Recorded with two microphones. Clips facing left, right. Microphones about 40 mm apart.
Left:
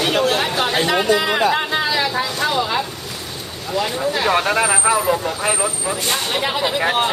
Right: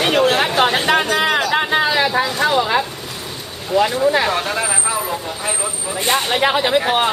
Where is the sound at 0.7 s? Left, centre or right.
Right.